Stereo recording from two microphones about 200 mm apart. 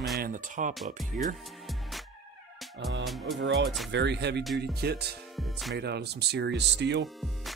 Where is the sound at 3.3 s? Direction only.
60° right (ahead or behind).